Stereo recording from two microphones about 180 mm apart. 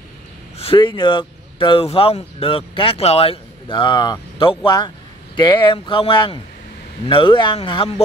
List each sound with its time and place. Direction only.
0.6 s speech: 30° left (ahead or behind)